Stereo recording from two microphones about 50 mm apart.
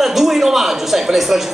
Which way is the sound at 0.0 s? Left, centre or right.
Centre.